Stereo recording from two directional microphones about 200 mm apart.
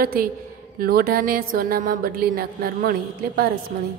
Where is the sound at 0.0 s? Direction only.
45° right (ahead or behind).